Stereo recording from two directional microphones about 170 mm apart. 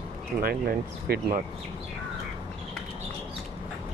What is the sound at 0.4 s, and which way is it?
Speech, 60° right (ahead or behind).